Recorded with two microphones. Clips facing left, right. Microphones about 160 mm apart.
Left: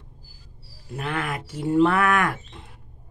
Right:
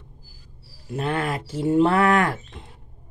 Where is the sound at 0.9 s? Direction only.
30° right (ahead or behind).